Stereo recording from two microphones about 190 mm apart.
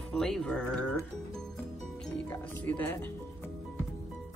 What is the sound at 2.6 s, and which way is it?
Speech, 10° left (ahead or behind).